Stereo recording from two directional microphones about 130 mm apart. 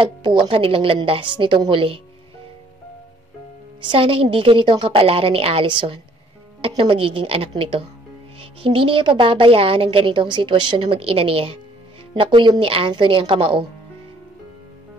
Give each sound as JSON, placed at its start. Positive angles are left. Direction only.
{"t": 0.0, "sound": "speech", "side_deg": -40}
{"t": 3.8, "sound": "a woman's voice", "side_deg": -40}